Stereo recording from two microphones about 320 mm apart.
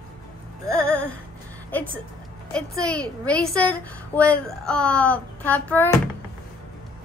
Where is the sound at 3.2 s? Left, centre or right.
Centre.